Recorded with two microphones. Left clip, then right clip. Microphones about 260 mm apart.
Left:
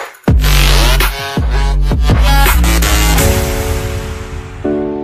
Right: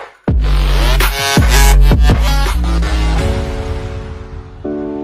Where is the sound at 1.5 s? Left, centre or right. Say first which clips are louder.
Right 7 dB; right.